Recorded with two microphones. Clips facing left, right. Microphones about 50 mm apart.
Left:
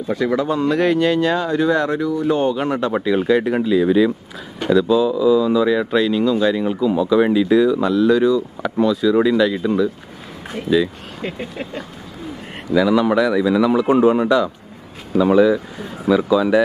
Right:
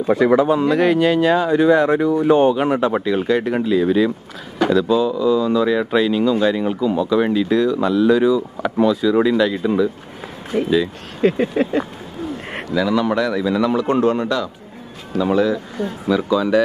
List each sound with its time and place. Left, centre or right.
0.1 s a man's voice: right
0.5 s speech: centre
10.5 s speech: right
12.7 s speech: centre